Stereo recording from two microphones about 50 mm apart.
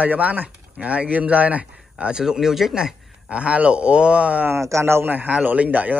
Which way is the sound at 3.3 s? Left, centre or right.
Right.